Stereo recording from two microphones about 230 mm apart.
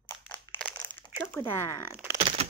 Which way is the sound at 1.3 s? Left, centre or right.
Centre.